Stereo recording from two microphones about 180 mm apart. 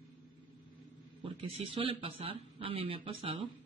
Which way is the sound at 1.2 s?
30° right (ahead or behind).